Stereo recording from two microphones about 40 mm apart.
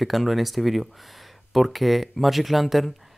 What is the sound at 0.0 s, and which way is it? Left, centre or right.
Speech, centre.